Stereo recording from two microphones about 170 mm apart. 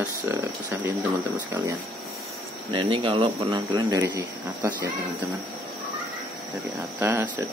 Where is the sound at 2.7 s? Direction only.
30° right (ahead or behind).